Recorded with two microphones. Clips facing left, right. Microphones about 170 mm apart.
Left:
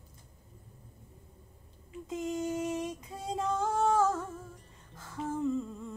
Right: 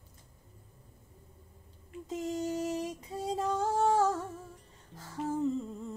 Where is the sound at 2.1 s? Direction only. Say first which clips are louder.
Even; 30° right (ahead or behind).